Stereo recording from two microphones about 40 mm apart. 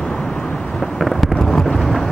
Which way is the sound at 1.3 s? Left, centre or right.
Centre.